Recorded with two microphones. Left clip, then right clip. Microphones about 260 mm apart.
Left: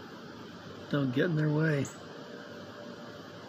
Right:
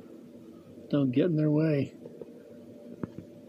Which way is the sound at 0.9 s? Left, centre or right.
Left.